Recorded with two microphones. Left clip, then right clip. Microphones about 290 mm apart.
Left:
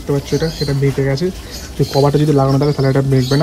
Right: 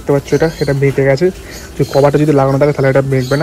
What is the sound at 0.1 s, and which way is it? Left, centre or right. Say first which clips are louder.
Speech: right 6 dB; centre.